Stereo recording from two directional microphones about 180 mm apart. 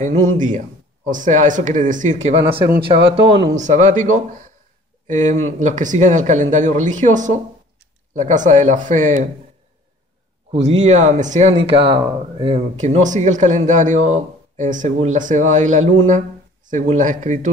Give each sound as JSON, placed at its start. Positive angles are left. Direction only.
{"t": 0.0, "sound": "a man's voice", "side_deg": -40}
{"t": 3.5, "sound": "a man's voice", "side_deg": -40}
{"t": 10.5, "sound": "a man's voice", "side_deg": -35}